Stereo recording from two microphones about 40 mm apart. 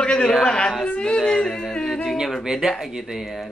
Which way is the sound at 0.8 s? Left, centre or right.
Left.